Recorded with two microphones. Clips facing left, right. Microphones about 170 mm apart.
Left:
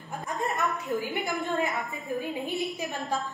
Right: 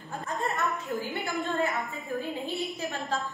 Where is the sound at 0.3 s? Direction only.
20° left (ahead or behind).